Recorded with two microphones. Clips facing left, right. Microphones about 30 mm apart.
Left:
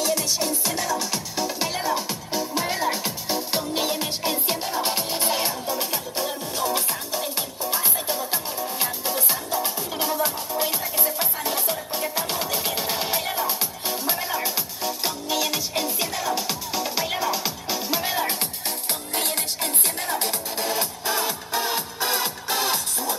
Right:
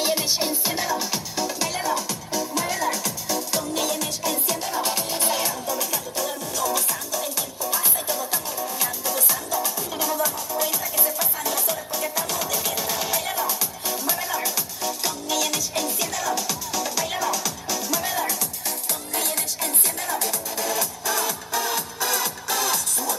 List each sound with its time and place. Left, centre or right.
0.0 s music: right; by 2.0 s centre
2.0 s music: left
4.8 s music: left
5.4 s music: left
13.2 s music: centre
13.5 s music: left
19.1 s music: left